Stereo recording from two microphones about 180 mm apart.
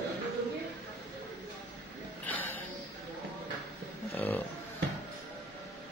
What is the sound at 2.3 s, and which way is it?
Music, 10° left (ahead or behind).